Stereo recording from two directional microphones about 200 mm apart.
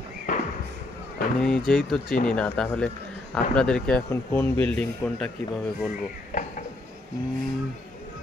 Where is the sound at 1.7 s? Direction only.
5° left (ahead or behind).